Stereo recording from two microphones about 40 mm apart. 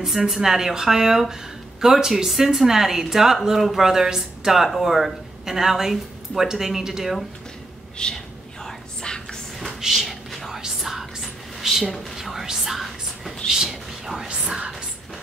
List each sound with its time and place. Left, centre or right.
0.0 s a woman's voice: centre
8.0 s speech: left
8.6 s whispering: centre
9.8 s a sound: centre
10.6 s whispering: centre
13.5 s a sound: centre